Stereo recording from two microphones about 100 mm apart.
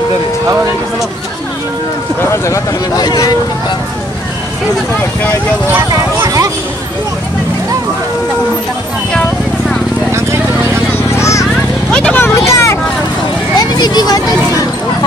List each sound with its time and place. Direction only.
2.3 s speech: 30° left (ahead or behind)
3.1 s speech: 45° left (ahead or behind)
5.7 s speech: 20° right (ahead or behind)
6.2 s a sound: 35° right (ahead or behind)
10.1 s vehicle: 25° right (ahead or behind)
11.1 s children playing: 30° left (ahead or behind)
11.9 s vehicle: 10° left (ahead or behind)
12.2 s vehicle: 30° left (ahead or behind)
13.6 s speech: 45° left (ahead or behind)